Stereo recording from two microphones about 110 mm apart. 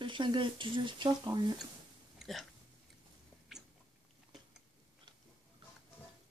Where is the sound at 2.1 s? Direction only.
Centre (ahead or behind).